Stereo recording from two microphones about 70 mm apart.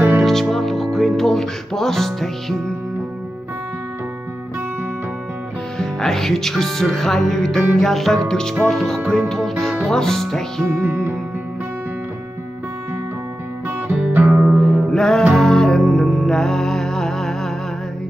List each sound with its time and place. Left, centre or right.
0.2 s music: centre
5.8 s speech: centre
9.3 s music: centre
10.8 s music: right
13.7 s music: right
14.5 s music: centre